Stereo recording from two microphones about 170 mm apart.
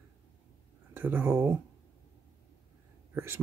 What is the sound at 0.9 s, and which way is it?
Speech, 10° right (ahead or behind).